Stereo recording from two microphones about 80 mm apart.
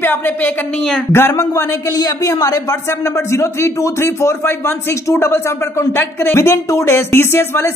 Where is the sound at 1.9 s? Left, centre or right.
Left.